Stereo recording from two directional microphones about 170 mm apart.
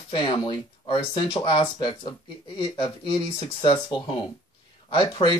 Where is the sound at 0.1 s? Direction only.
30° left (ahead or behind).